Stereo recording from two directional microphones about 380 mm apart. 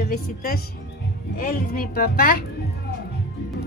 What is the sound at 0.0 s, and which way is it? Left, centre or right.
Speech, left.